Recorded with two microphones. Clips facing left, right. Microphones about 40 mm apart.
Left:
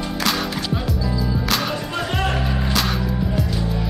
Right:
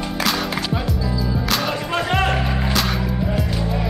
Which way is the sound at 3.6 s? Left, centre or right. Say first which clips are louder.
Right 1 dB; right.